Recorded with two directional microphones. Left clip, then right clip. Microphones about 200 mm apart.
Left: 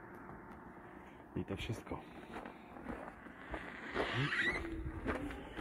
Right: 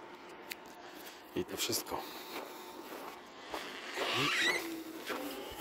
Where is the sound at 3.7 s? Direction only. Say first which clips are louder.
Right 3 dB; 35° right (ahead or behind).